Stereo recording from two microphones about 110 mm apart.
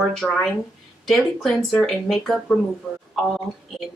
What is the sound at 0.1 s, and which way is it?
Speech, 5° left (ahead or behind).